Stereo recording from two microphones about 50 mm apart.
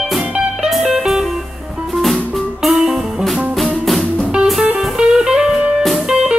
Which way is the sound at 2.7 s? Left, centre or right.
Centre.